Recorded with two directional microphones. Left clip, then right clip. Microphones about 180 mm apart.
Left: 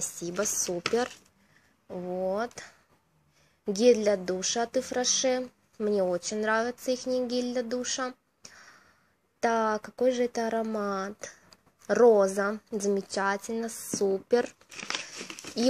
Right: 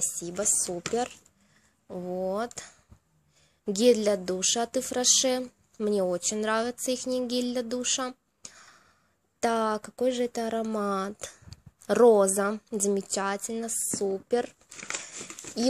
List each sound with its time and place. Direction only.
0.0 s speech: 5° right (ahead or behind)
0.7 s speech: 10° left (ahead or behind)
1.9 s a woman's voice: 15° right (ahead or behind)
15.6 s a woman's voice: 5° right (ahead or behind)